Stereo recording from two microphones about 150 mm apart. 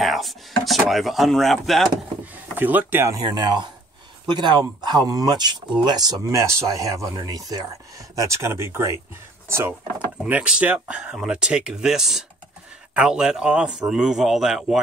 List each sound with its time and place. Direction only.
0.0 s speech: centre (ahead or behind)
2.5 s speech: 10° right (ahead or behind)
3.2 s speech: 30° right (ahead or behind); by 14.8 s centre (ahead or behind)